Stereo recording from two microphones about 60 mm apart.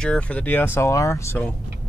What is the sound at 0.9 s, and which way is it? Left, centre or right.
Speech, left.